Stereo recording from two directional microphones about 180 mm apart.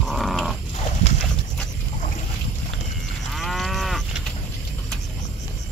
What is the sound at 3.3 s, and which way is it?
Cattle, centre (ahead or behind).